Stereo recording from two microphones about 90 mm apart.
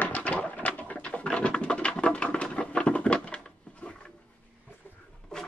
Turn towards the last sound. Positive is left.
turn(degrees=10)  # may be behind; listen again after turning